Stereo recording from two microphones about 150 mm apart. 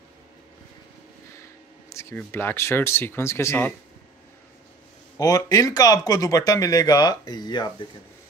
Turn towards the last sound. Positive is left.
turn(degrees=30)  # may be behind; listen again after turning